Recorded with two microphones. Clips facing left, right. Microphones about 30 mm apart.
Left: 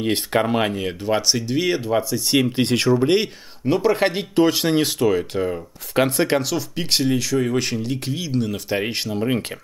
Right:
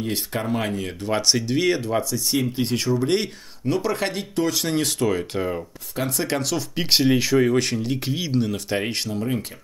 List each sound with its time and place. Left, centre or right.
0.0 s speech: left
1.0 s speech: centre
2.5 s speech: left
3.0 s speech: centre
6.7 s speech: centre
7.4 s speech: centre
8.5 s speech: centre
9.1 s speech: left